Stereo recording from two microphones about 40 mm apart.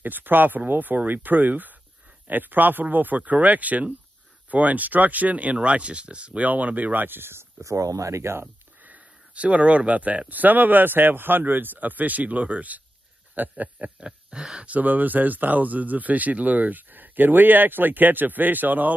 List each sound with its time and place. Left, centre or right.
0.0 s speech: right
6.4 s speech: right
8.3 s speech: right
8.8 s speech: right
13.3 s a sound: right
13.8 s speech: right
14.7 s speech: right